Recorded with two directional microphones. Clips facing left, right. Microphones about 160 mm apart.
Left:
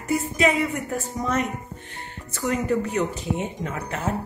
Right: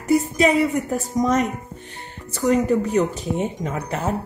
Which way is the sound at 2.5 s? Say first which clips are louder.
Right 5 dB; 35° right (ahead or behind).